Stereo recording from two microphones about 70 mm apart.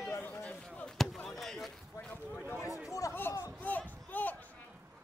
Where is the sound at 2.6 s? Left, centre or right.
Centre.